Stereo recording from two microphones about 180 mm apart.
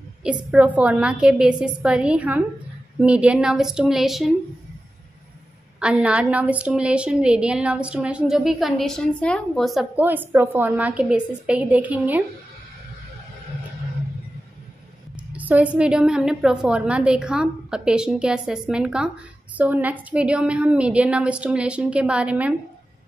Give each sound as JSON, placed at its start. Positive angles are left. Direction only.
{"t": 0.5, "sound": "a woman's voice", "side_deg": -5}
{"t": 5.8, "sound": "a woman's voice", "side_deg": -5}
{"t": 15.1, "sound": "a woman's voice", "side_deg": -10}